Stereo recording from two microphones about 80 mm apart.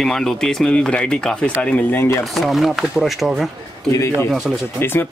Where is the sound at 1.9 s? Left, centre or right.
Left.